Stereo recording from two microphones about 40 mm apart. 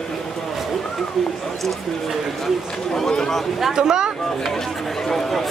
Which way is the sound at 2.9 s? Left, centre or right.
Centre.